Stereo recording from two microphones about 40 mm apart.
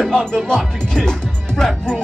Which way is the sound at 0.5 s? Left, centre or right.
Centre.